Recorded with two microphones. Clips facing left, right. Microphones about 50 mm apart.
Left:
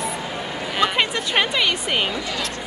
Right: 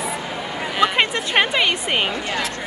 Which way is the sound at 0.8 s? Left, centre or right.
Centre.